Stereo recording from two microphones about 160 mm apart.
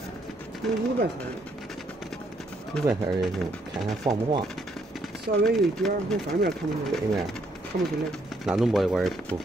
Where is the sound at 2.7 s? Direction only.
Centre (ahead or behind).